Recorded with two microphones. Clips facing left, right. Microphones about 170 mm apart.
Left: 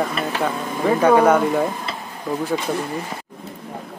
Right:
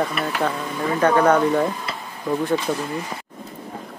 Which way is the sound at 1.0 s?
10° left (ahead or behind).